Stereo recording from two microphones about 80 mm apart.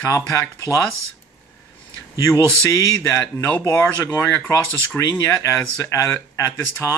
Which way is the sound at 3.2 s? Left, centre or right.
Left.